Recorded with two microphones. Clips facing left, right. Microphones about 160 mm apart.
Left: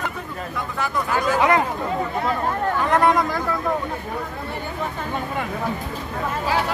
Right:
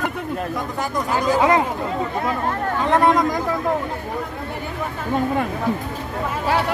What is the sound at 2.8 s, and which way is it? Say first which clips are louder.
Speech: right 2 dB; 20° right (ahead or behind).